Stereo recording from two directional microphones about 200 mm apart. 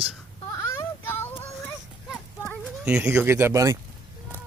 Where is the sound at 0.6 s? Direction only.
10° left (ahead or behind).